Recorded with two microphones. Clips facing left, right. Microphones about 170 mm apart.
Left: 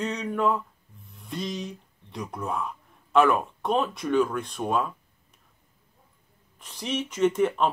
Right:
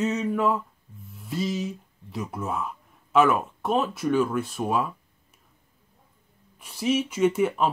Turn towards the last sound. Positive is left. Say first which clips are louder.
# even
turn(degrees=-10)  # may be behind; listen again after turning